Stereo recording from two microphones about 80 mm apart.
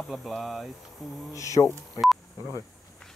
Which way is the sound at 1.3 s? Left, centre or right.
Left.